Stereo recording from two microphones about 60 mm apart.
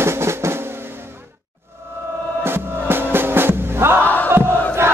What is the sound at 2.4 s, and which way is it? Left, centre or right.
Music, right.